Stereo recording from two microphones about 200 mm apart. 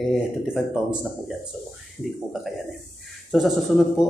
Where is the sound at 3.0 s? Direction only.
Centre (ahead or behind).